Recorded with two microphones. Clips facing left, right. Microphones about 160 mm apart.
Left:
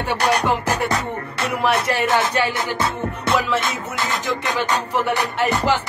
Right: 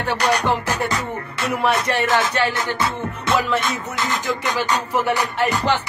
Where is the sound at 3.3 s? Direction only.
Centre (ahead or behind).